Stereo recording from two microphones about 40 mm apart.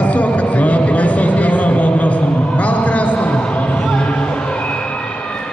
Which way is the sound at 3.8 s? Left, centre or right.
Centre.